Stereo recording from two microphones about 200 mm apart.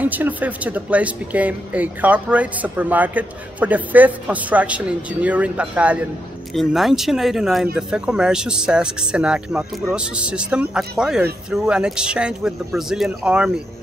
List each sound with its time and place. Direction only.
0.0 s speech: 10° right (ahead or behind)